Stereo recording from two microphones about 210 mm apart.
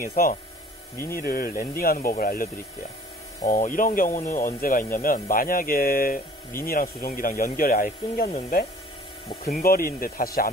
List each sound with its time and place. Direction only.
0.0 s speech: 45° left (ahead or behind)